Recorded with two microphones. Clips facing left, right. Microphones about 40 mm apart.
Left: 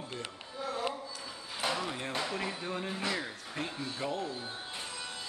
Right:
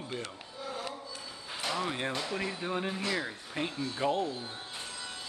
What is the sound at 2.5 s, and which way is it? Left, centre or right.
Speech, centre.